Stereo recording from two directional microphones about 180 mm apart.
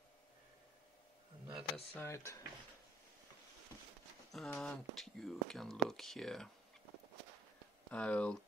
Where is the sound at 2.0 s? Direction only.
15° left (ahead or behind).